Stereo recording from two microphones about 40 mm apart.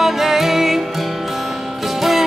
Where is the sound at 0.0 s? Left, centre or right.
Centre.